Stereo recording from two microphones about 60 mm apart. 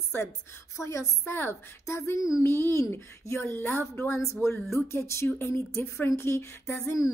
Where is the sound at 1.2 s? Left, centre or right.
Left.